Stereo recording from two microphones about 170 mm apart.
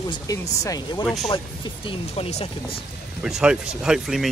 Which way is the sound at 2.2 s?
40° left (ahead or behind).